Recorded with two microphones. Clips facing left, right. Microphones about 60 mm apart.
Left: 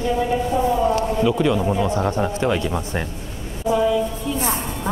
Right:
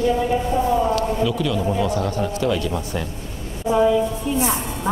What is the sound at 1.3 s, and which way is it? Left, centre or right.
Speech, left.